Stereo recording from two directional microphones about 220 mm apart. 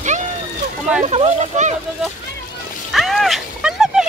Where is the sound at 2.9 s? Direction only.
Centre (ahead or behind).